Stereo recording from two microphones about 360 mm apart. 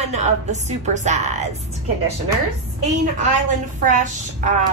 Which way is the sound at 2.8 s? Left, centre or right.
Centre.